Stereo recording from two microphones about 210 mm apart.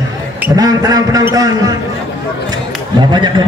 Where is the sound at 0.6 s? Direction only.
15° right (ahead or behind).